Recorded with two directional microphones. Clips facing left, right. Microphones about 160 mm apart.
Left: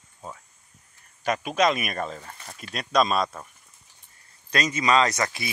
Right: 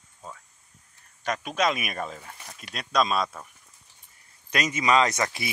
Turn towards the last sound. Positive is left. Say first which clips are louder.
# even
turn(degrees=-25)  # may be behind; listen again after turning